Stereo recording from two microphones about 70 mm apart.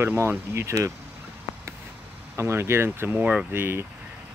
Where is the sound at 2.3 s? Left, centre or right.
Right.